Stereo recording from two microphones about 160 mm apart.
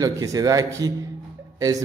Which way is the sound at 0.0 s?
20° right (ahead or behind).